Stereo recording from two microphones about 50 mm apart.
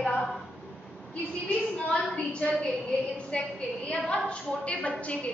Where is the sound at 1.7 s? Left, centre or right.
Centre.